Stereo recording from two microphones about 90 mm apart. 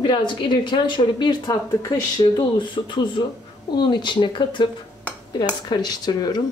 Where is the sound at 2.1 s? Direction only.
55° left (ahead or behind).